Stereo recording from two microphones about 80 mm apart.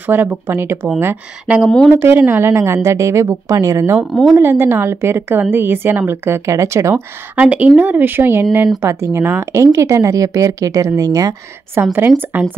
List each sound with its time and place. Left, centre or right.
0.0 s a woman's voice: right
1.5 s speech: centre
1.9 s speech: right
4.1 s speech: centre
4.4 s a woman's voice: right
7.3 s a woman's voice: centre; by 11.3 s right
11.7 s a woman's voice: right